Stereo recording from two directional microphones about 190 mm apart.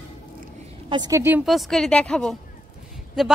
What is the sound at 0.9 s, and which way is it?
A woman's voice, 20° right (ahead or behind).